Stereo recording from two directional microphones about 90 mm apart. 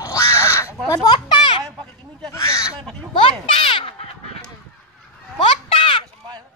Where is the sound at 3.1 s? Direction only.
80° left.